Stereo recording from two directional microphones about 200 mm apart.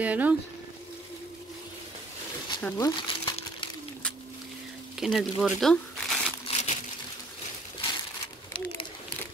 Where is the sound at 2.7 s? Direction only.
20° left (ahead or behind).